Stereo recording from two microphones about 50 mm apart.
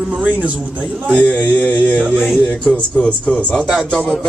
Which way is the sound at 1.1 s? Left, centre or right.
Left.